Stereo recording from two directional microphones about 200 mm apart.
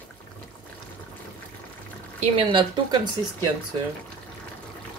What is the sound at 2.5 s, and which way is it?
Speech, 25° right (ahead or behind).